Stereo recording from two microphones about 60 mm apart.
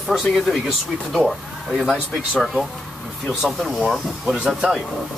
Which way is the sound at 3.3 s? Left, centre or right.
Centre.